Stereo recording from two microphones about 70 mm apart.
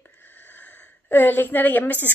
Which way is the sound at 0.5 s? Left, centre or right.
Left.